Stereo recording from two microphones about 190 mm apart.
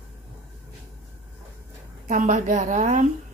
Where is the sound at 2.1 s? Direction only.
40° right (ahead or behind).